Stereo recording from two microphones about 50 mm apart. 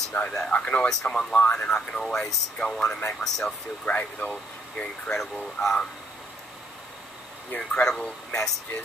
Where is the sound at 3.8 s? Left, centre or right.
Left.